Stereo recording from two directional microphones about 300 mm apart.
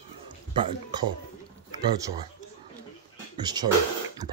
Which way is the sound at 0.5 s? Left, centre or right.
Centre.